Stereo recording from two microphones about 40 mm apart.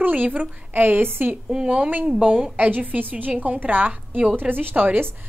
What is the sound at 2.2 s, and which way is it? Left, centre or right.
A woman's voice, right.